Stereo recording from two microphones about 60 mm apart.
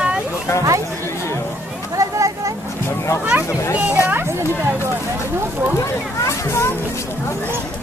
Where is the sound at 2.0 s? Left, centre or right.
Right.